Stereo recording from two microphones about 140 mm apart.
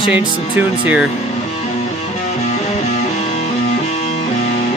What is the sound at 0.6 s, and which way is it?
Speech, 10° right (ahead or behind).